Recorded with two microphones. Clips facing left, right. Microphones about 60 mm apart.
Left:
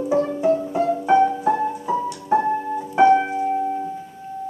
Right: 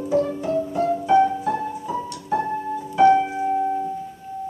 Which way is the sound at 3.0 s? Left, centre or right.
Centre.